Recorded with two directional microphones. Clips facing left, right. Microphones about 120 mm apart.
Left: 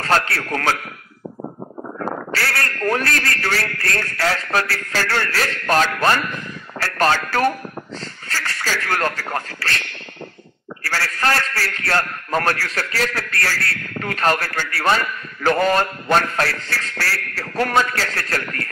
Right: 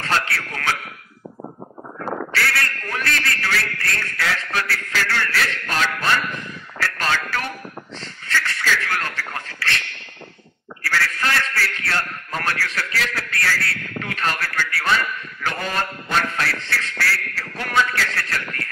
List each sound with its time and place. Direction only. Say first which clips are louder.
0.0 s a man's voice: left 4 dB; 40° left (ahead or behind)
2.3 s a man's voice: even; 40° left (ahead or behind)
10.8 s a man's voice: left 1 dB; 40° left (ahead or behind)